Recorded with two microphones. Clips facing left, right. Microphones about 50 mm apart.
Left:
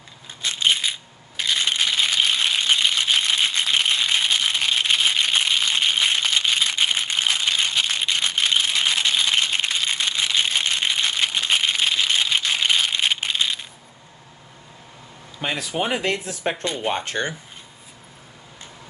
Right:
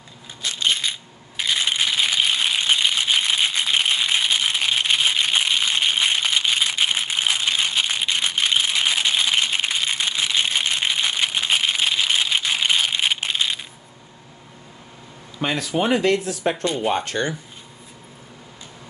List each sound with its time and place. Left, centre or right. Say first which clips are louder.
0.4 s coin: left 1 dB; left
0.8 s coin: even; centre
1.3 s rattle: even; centre
15.4 s speech: right 3 dB; centre
16.0 s speech: right 5 dB; left